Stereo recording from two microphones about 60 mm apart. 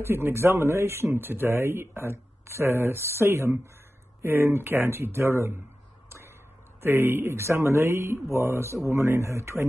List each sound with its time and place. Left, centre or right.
0.0 s speech: right
6.0 s arrow: right
6.8 s speech: right